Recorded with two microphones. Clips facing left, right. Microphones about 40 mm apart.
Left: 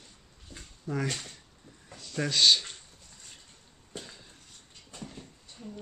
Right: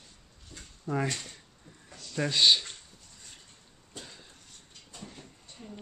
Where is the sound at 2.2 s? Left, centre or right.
Centre.